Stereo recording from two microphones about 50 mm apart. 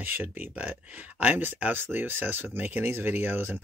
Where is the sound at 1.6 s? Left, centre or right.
Right.